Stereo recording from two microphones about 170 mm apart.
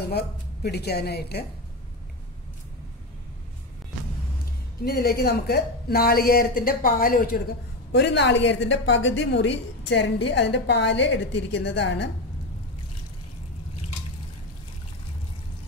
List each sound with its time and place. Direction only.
0.1 s a woman's voice: 70° left (ahead or behind)
4.8 s a woman's voice: 65° left (ahead or behind); by 12.1 s 90° left